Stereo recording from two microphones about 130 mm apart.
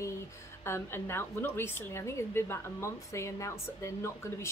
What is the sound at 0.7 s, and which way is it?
A woman's voice, 20° left (ahead or behind).